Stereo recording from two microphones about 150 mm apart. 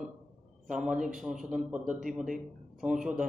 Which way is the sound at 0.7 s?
5° right (ahead or behind).